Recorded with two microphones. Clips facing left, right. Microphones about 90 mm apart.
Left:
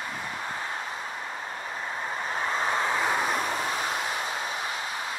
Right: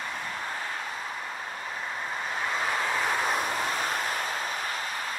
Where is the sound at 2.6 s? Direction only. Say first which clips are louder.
Left 3 dB; 25° left (ahead or behind).